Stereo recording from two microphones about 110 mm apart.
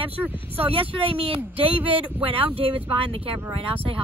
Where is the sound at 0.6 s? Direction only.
55° right (ahead or behind).